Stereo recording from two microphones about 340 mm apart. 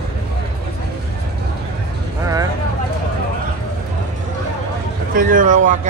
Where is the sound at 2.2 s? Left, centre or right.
Centre.